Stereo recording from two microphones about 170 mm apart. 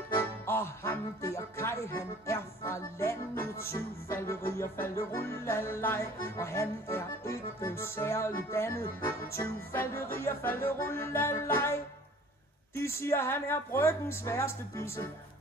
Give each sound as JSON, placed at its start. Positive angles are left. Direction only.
{"t": 0.2, "sound": "speech", "side_deg": 15}
{"t": 12.7, "sound": "speech", "side_deg": 15}